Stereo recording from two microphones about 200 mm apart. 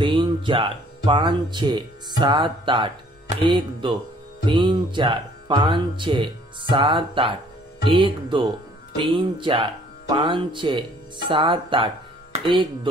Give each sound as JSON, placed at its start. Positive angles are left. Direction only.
{"t": 0.0, "sound": "speech", "side_deg": -25}